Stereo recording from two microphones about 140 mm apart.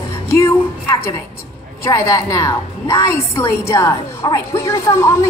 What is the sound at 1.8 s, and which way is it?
A woman's voice, 20° left (ahead or behind).